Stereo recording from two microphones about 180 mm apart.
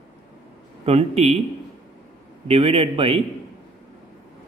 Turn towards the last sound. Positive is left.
turn(degrees=-30)  # may be behind; listen again after turning